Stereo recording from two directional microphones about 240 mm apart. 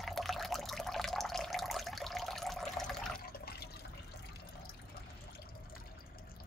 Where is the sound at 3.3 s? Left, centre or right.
Left.